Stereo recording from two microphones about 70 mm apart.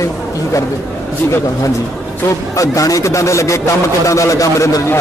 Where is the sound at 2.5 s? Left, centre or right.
Left.